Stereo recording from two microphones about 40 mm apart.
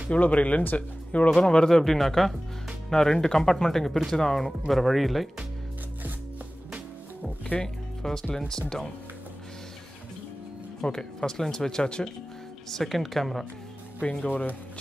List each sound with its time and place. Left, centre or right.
0.1 s speech: left
1.5 s speech: centre
7.6 s speech: centre
10.8 s speech: centre
12.6 s speech: centre
14.2 s speech: left